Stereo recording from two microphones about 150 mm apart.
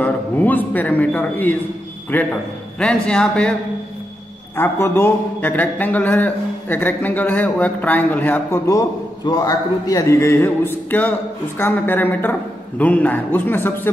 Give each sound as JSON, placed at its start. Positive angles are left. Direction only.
{"t": 0.0, "sound": "a man's voice", "side_deg": 10}
{"t": 4.6, "sound": "speech", "side_deg": 15}